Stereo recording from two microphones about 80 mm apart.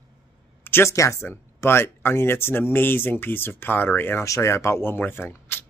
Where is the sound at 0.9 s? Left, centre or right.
Left.